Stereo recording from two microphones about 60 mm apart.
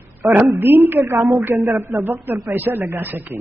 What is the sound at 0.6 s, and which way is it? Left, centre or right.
Speech, right.